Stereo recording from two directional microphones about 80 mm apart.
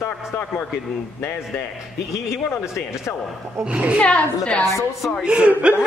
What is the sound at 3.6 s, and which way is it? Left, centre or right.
Speech, centre.